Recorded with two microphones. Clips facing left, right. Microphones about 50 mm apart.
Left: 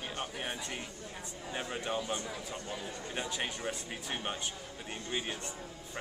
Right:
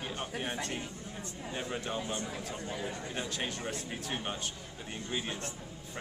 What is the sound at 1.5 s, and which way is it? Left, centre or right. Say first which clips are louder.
A man's voice: left 1 dB; centre.